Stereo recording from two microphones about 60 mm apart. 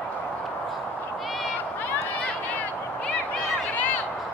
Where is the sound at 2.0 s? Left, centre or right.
Left.